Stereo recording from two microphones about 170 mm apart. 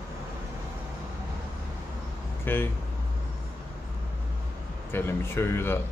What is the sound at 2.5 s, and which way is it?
Speech, 10° left (ahead or behind).